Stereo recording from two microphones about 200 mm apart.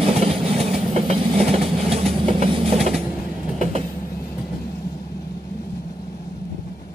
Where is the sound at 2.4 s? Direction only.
30° right (ahead or behind).